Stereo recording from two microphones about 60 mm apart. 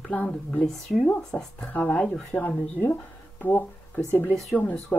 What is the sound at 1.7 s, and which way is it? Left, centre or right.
Speech, left.